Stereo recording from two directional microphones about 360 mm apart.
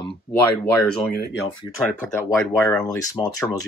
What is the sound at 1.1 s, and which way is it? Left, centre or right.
Speech, left.